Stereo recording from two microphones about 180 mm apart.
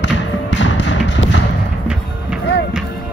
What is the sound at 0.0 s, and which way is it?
Bouncing, 85° left.